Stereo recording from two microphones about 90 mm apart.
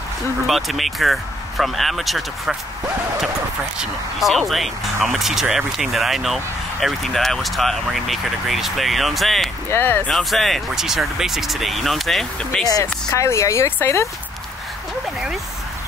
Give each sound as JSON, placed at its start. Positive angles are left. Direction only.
{"t": 0.5, "sound": "speech", "side_deg": 0}
{"t": 3.8, "sound": "speech", "side_deg": 0}
{"t": 9.7, "sound": "speech", "side_deg": 25}
{"t": 10.0, "sound": "speech", "side_deg": 5}
{"t": 12.8, "sound": "speech", "side_deg": 30}